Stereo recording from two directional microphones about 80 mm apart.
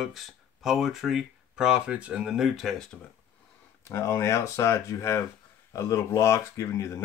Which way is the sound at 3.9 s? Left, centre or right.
Left.